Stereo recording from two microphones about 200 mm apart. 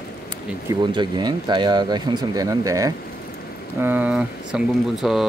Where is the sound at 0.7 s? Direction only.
20° right (ahead or behind).